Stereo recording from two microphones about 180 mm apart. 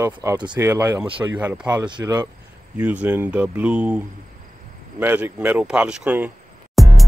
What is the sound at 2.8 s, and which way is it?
Speech, 5° right (ahead or behind).